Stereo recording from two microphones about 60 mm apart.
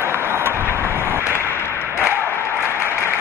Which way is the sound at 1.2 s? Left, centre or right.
Left.